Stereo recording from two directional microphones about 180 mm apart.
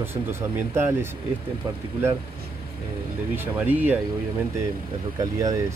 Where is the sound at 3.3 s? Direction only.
10° right (ahead or behind).